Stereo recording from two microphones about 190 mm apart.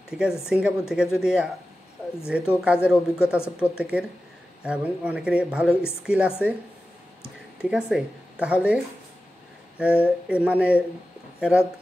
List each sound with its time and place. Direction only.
0.1 s speech: 5° right (ahead or behind)
3.3 s a woman's voice: 10° left (ahead or behind)
3.7 s speech: 5° right (ahead or behind)
7.7 s speech: 5° right (ahead or behind)
10.0 s speech: 5° right (ahead or behind)